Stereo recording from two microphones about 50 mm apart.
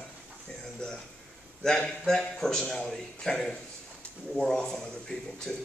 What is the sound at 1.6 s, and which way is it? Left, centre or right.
A man's voice, centre.